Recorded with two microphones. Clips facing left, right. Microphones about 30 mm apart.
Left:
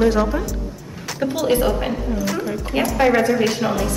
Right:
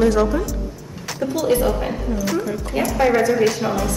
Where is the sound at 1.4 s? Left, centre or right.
Left.